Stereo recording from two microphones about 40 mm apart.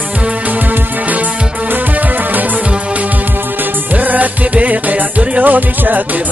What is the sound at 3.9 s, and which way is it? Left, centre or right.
Music, right.